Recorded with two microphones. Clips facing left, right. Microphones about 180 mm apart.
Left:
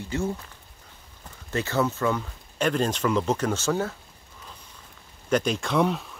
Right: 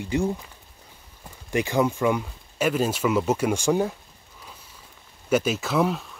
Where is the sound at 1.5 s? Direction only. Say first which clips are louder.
Right 3 dB; 15° right (ahead or behind).